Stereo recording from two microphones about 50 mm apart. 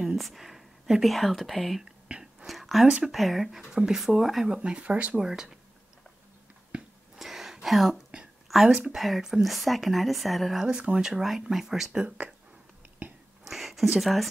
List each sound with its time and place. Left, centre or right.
0.0 s speech: centre
2.1 s whispering: right
2.4 s a sound: centre
3.1 s speech: centre
4.5 s speech: centre
5.2 s speech: centre
6.7 s a sound: centre
7.2 s a sound: centre
7.6 s speech: centre
10.6 s speech: centre
13.5 s a sound: centre
13.9 s speech: centre